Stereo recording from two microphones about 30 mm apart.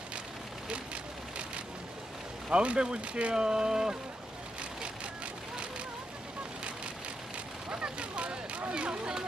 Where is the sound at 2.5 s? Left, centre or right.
Right.